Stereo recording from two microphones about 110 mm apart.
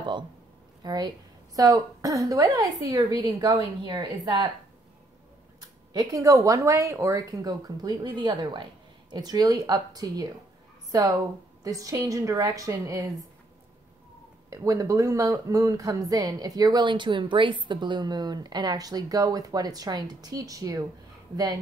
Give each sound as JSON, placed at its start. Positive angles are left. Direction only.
{"t": 0.8, "sound": "speech", "side_deg": -40}
{"t": 5.6, "sound": "speech", "side_deg": -35}
{"t": 14.5, "sound": "speech", "side_deg": -30}